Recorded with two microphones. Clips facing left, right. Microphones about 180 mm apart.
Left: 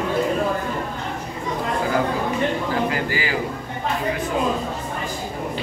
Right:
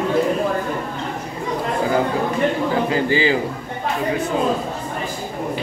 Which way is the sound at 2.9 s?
25° right (ahead or behind).